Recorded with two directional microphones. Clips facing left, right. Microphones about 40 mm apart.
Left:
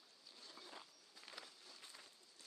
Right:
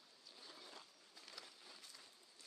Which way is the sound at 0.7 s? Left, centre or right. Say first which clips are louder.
Left 1 dB; centre.